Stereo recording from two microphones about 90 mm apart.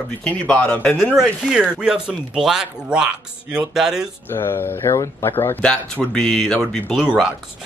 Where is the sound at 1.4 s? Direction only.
10° right (ahead or behind).